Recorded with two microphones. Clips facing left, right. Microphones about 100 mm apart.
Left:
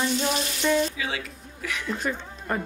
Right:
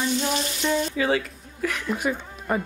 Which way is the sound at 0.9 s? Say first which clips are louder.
Right 8 dB; 45° right (ahead or behind).